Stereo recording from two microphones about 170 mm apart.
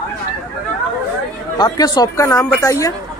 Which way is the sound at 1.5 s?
25° left (ahead or behind).